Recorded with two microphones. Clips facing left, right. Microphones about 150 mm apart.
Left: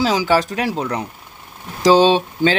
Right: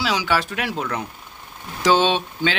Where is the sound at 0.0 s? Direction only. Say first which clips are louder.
Left 6 dB; 40° left (ahead or behind).